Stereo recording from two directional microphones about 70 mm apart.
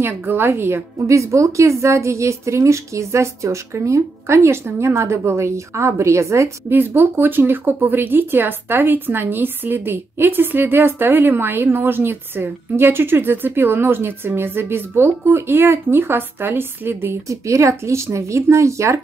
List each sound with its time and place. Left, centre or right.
0.0 s a woman's voice: right
6.7 s speech: right
17.3 s a woman's voice: right